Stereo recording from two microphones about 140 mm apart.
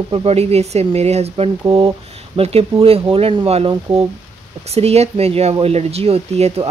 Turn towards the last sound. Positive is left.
turn(degrees=-50)  # may be behind; listen again after turning